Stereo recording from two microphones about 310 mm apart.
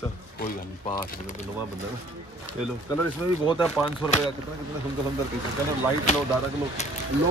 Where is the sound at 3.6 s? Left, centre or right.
Centre.